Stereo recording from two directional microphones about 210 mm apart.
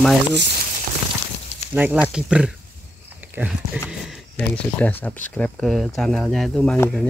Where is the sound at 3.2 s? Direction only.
10° right (ahead or behind).